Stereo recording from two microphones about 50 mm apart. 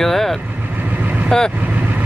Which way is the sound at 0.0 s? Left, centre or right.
Centre.